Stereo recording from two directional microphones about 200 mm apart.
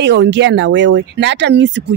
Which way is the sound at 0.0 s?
60° right (ahead or behind).